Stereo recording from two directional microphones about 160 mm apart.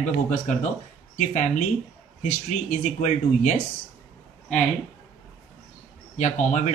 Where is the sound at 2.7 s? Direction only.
50° left (ahead or behind).